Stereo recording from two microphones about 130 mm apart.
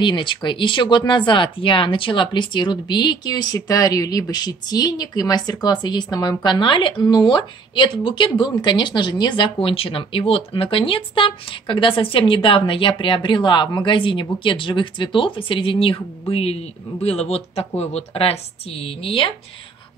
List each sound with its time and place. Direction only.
0.0 s speech: 35° left (ahead or behind)